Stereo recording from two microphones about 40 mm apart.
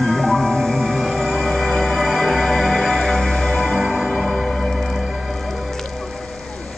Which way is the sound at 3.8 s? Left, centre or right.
Centre.